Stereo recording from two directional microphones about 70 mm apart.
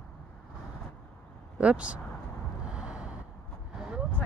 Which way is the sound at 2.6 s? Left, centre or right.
Centre.